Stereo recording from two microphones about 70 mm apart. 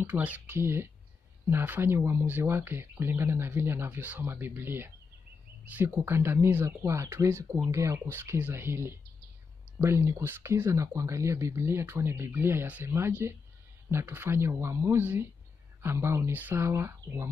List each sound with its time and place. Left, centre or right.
0.0 s speech: right
0.6 s speech: right
8.4 s speech: right